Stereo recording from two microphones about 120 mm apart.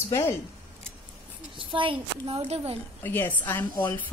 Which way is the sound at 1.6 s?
45° right (ahead or behind).